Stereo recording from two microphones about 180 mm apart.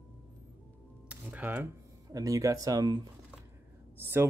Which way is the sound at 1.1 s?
10° right (ahead or behind).